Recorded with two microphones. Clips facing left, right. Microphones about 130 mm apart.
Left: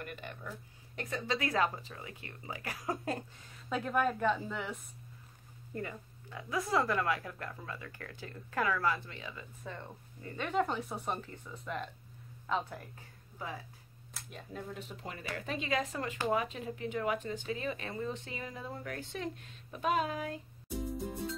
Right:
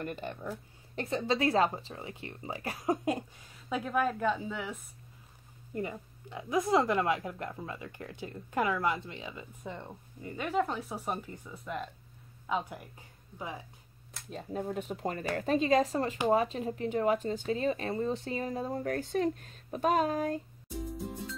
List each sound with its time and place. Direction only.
0.0 s a woman's voice: 30° right (ahead or behind); by 4.7 s centre (ahead or behind)
5.8 s a woman's voice: 20° right (ahead or behind); by 11.1 s centre (ahead or behind)
11.1 s speech: 10° right (ahead or behind)
14.3 s speech: 45° right (ahead or behind)
21.0 s music: centre (ahead or behind)